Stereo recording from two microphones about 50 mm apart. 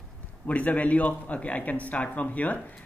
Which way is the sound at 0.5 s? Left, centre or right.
Left.